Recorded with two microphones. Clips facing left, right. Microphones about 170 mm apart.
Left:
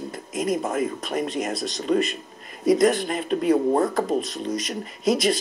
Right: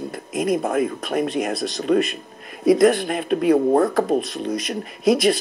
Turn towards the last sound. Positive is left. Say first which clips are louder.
# right 4 dB
turn(degrees=-60)  # may be behind; listen again after turning